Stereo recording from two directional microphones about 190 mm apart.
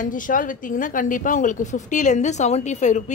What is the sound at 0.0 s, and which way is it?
A woman's voice, 45° left (ahead or behind).